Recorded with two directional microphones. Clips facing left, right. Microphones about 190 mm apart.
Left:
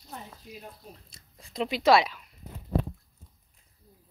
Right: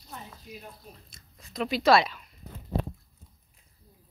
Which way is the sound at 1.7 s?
15° left (ahead or behind).